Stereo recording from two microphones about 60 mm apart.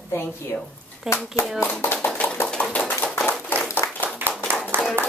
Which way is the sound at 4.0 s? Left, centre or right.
Right.